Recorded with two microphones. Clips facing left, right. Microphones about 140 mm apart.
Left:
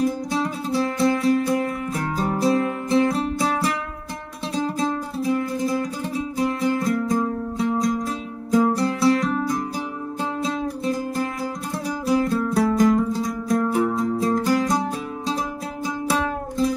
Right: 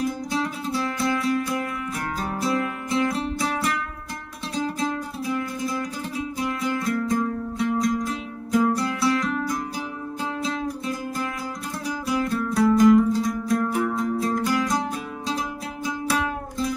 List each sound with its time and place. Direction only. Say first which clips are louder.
0.0 s music: left 3 dB; 30° left (ahead or behind)
12.1 s music: left 5 dB; 30° left (ahead or behind)